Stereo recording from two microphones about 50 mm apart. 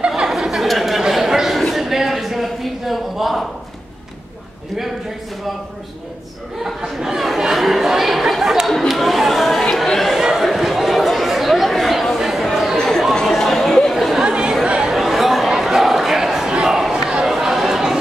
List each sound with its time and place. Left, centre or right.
0.3 s chatter: centre
0.7 s a sound: centre
6.8 s chatter: centre
12.7 s chatter: centre
14.2 s chatter: centre
16.5 s a sound: centre
17.3 s chatter: centre